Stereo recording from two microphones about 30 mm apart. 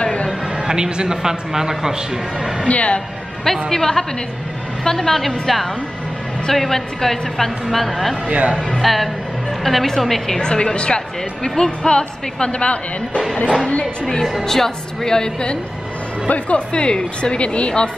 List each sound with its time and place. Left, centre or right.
0.0 s a sound: left
0.3 s a sound: right
1.0 s speech: centre
2.7 s speech: left
3.7 s a woman's voice: centre
5.1 s a woman's voice: centre
8.3 s speech: right
8.5 s speech: centre
8.8 s a woman's voice: centre
10.4 s a woman's voice: left
11.4 s a woman's voice: left
14.4 s a woman's voice: centre
16.3 s speech: left
16.7 s a woman's voice: left